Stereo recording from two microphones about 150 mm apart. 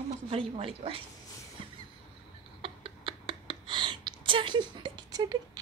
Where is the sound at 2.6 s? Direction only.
35° right (ahead or behind).